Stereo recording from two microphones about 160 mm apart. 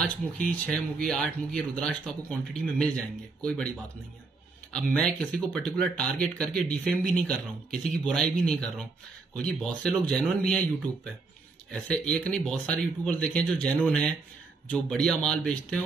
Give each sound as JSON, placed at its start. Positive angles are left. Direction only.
{"t": 0.0, "sound": "speech", "side_deg": 5}
{"t": 4.7, "sound": "speech", "side_deg": 5}
{"t": 11.7, "sound": "speech", "side_deg": 5}